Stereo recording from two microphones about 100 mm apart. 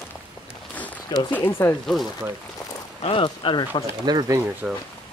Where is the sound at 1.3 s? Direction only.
25° left (ahead or behind).